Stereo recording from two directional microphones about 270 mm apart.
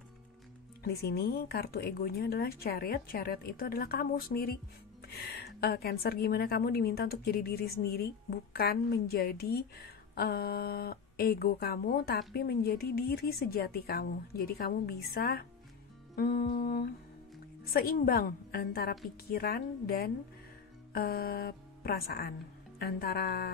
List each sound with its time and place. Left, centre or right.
0.8 s a woman's voice: left